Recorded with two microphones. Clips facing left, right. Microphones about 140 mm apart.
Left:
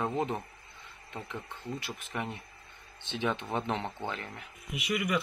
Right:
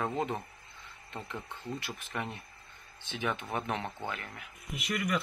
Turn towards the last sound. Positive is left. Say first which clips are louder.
# left 2 dB
turn(degrees=5)  # may be behind; listen again after turning